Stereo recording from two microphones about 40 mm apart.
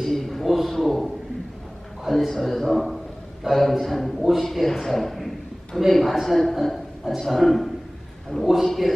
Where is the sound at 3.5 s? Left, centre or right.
Centre.